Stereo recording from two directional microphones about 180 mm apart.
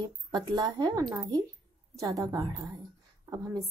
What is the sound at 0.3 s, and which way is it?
A woman's voice, 20° right (ahead or behind).